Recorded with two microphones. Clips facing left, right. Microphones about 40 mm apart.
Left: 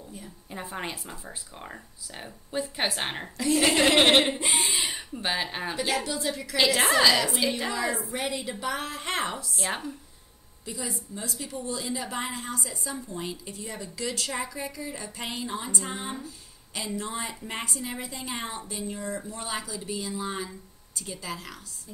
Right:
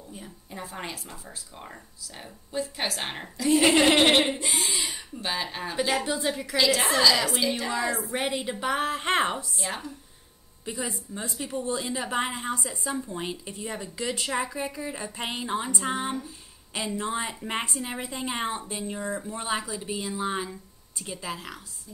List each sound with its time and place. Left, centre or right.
0.7 s speech: centre
3.5 s speech: centre
4.4 s speech: left
4.9 s speech: centre
6.0 s a woman's voice: right
6.5 s a woman's voice: left
8.0 s a woman's voice: right
9.7 s a woman's voice: left
10.6 s a woman's voice: right